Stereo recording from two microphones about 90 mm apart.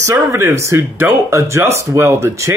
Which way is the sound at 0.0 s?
30° right (ahead or behind).